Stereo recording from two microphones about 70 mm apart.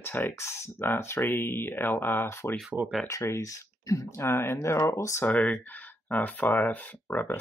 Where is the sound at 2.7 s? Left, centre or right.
Centre.